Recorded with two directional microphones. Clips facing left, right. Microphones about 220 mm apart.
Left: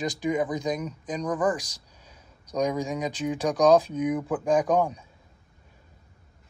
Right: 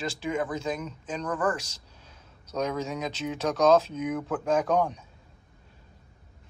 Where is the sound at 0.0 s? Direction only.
15° left (ahead or behind).